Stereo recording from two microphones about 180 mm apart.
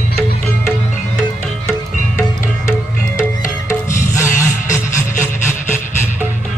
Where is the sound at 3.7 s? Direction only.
15° left (ahead or behind).